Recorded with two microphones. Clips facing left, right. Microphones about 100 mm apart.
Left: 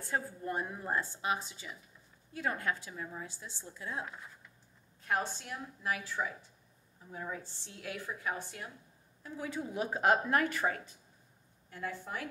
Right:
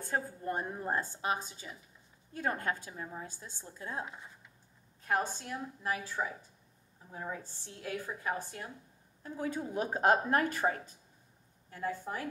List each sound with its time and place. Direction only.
0.0 s a woman's voice: 35° right (ahead or behind)
2.9 s a woman's voice: 35° right (ahead or behind)
5.0 s a woman's voice: 40° right (ahead or behind)